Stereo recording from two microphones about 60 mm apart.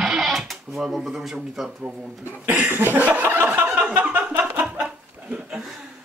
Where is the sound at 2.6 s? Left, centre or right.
Right.